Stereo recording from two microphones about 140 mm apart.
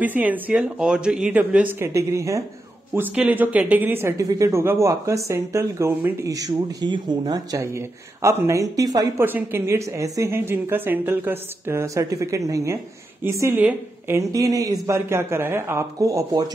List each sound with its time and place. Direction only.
0.0 s speech: 10° right (ahead or behind)
2.0 s speech: 20° right (ahead or behind)
9.2 s speech: 15° right (ahead or behind)